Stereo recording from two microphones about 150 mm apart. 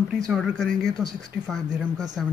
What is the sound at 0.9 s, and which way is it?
Speech, 10° right (ahead or behind).